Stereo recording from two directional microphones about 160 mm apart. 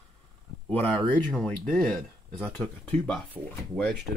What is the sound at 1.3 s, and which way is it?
Speech, 5° left (ahead or behind).